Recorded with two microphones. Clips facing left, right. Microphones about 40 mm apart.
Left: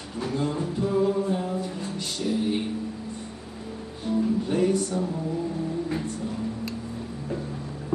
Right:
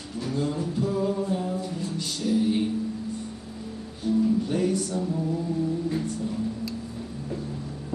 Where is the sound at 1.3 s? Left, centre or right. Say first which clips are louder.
Left 1 dB; centre.